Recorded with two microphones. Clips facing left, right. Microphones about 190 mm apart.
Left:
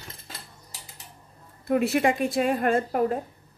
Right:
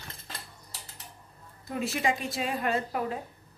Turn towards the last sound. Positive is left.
turn(degrees=45)  # may be behind; listen again after turning